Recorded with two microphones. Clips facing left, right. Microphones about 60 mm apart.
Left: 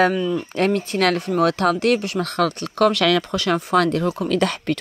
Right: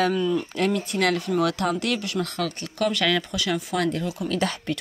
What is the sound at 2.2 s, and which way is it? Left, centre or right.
Speech, left.